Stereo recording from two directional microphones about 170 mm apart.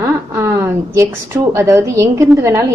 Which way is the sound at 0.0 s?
15° right (ahead or behind).